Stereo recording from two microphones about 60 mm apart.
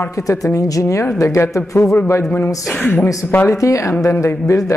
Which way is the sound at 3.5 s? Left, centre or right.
Left.